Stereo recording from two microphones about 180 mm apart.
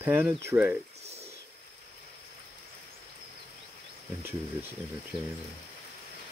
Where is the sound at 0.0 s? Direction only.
10° right (ahead or behind).